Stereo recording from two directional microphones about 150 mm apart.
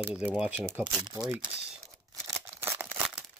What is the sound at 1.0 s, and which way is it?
Speech, 25° right (ahead or behind).